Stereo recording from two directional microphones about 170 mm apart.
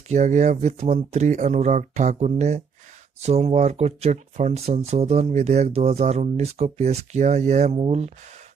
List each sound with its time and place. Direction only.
0.1 s speech: 45° right (ahead or behind)